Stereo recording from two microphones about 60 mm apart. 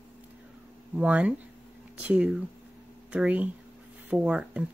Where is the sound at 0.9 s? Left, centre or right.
Right.